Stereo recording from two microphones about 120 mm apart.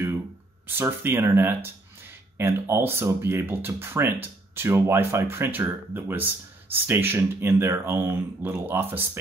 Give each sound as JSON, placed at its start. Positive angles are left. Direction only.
{"t": 0.7, "sound": "speech", "side_deg": -20}